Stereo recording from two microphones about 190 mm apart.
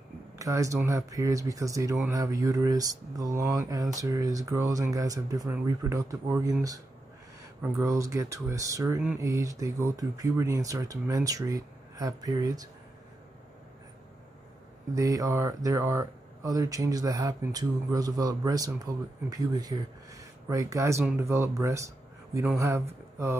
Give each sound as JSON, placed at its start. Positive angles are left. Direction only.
{"t": 0.4, "sound": "speech", "side_deg": -15}
{"t": 15.0, "sound": "speech", "side_deg": -15}